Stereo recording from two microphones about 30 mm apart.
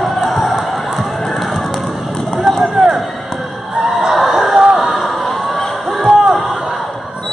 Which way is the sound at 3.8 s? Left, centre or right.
Centre.